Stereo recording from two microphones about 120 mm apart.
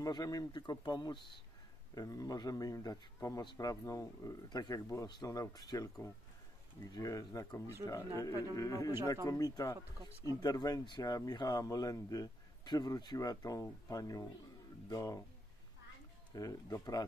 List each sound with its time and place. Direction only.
0.0 s speech: 30° left (ahead or behind)
16.3 s speech: 30° left (ahead or behind)